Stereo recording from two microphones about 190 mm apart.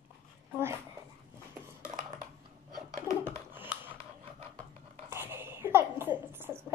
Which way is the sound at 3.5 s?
10° right (ahead or behind).